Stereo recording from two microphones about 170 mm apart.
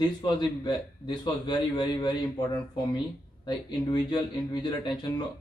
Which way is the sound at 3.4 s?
25° left (ahead or behind).